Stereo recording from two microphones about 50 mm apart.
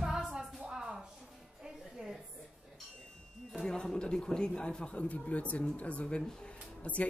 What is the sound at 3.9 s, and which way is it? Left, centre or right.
A man's voice, centre.